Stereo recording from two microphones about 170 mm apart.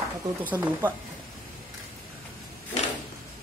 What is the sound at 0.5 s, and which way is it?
Speech, 10° right (ahead or behind).